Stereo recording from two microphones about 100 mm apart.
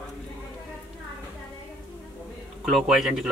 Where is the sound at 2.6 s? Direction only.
5° right (ahead or behind).